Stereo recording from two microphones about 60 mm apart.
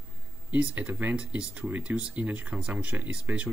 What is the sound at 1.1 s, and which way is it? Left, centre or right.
Speech, centre.